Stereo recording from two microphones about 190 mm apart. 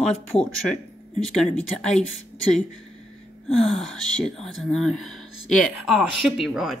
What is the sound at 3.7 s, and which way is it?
Speech, 5° left (ahead or behind).